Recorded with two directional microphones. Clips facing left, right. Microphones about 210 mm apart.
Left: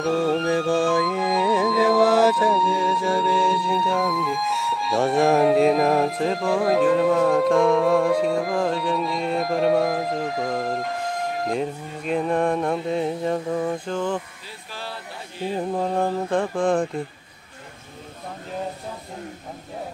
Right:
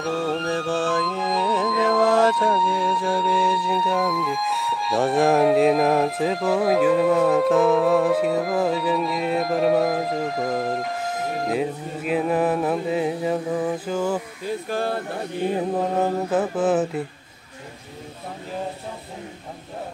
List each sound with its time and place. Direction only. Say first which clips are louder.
0.0 s music: left 3 dB; centre (ahead or behind)
14.4 s speech: right 12 dB; 50° right (ahead or behind)
16.0 s speech: right 1 dB; 5° right (ahead or behind)